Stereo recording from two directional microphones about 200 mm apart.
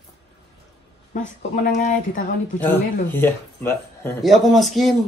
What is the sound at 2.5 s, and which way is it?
Speech, 10° left (ahead or behind).